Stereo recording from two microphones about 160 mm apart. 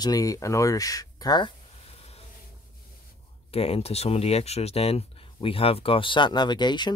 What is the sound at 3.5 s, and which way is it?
Speech, 40° left (ahead or behind).